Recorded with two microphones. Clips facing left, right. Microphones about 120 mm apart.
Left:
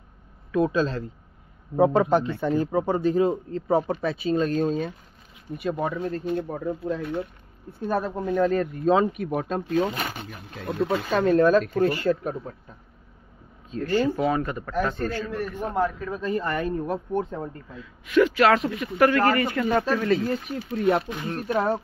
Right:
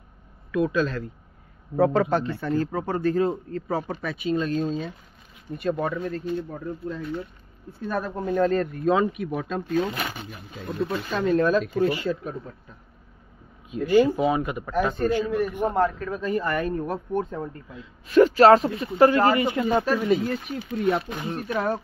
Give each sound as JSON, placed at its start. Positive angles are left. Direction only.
{"t": 0.5, "sound": "speech", "side_deg": 30}
{"t": 1.8, "sound": "speech", "side_deg": 15}
{"t": 5.5, "sound": "speech", "side_deg": 5}
{"t": 6.2, "sound": "speech", "side_deg": 60}
{"t": 7.8, "sound": "speech", "side_deg": 30}
{"t": 8.3, "sound": "speech", "side_deg": 5}
{"t": 8.8, "sound": "speech", "side_deg": 30}
{"t": 9.1, "sound": "speech", "side_deg": 45}
{"t": 10.6, "sound": "speech", "side_deg": 80}
{"t": 11.1, "sound": "speech", "side_deg": 50}
{"t": 13.7, "sound": "a man's voice", "side_deg": -15}
{"t": 16.3, "sound": "speech", "side_deg": 30}
{"t": 18.0, "sound": "a man's voice", "side_deg": -40}
{"t": 20.2, "sound": "speech", "side_deg": 30}